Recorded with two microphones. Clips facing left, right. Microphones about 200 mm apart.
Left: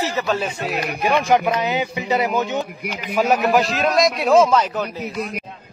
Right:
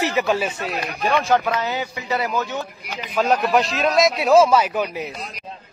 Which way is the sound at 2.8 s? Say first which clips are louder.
Left 5 dB; 55° left (ahead or behind).